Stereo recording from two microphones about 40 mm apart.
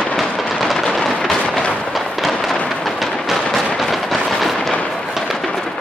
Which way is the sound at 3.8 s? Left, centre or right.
Centre.